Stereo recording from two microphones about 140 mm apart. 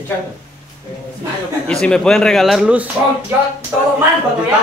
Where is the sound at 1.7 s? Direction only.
5° left (ahead or behind).